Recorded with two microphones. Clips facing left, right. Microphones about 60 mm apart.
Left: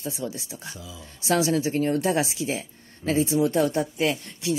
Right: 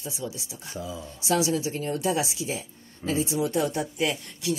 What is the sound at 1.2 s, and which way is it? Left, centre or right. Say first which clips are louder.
Speech: left 2 dB; left.